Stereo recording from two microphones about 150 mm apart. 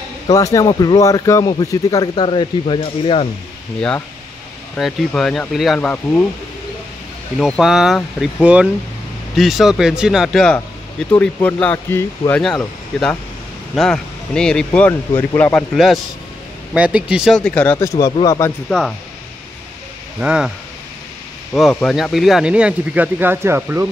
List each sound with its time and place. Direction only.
0.3 s speech: 20° left (ahead or behind); by 3.3 s 40° left (ahead or behind)
4.7 s speech: centre (ahead or behind)
7.3 s a man's voice: centre (ahead or behind)
15.7 s speech: centre (ahead or behind)
17.7 s speech: 20° left (ahead or behind)
18.7 s speech: 5° left (ahead or behind)
20.2 s speech: 5° right (ahead or behind)